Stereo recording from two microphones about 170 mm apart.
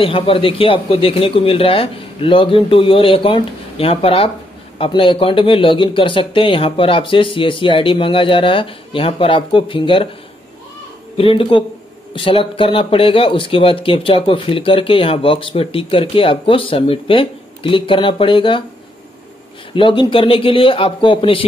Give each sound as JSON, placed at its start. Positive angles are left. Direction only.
{"t": 0.0, "sound": "speech", "side_deg": 30}
{"t": 11.1, "sound": "speech", "side_deg": 30}
{"t": 19.7, "sound": "speech", "side_deg": 30}